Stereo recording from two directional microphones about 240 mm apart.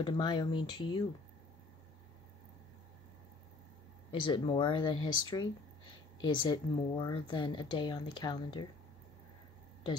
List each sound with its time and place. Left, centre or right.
0.0 s speech: centre
4.1 s speech: centre